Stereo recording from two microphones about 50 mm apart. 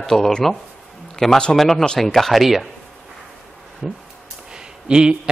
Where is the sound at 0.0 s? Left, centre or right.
Centre.